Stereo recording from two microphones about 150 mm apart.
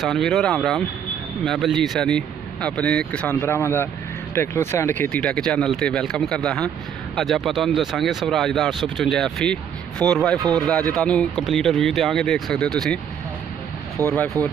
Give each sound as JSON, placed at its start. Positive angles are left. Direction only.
{"t": 0.0, "sound": "speech", "side_deg": 0}
{"t": 14.0, "sound": "speech", "side_deg": -20}